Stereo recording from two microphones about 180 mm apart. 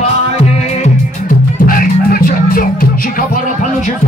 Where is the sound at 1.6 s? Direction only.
55° left (ahead or behind).